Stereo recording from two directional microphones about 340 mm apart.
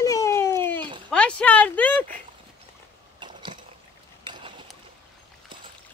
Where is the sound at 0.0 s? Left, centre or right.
Centre.